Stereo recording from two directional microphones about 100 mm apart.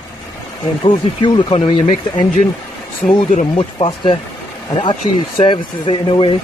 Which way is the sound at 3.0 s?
60° left (ahead or behind).